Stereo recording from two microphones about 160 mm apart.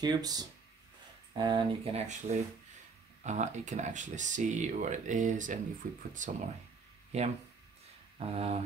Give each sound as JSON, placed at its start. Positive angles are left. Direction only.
{"t": 0.0, "sound": "speech", "side_deg": -25}